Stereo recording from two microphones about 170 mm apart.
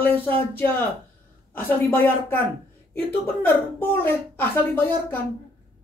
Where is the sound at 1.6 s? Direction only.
10° left (ahead or behind).